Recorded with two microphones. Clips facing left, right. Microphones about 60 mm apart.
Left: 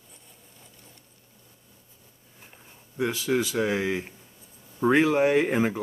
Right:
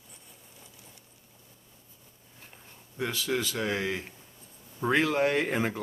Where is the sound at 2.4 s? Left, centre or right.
Centre.